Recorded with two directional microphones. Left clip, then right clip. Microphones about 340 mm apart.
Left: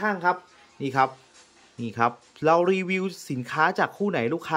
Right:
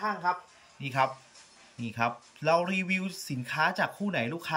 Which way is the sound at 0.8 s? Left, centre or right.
Centre.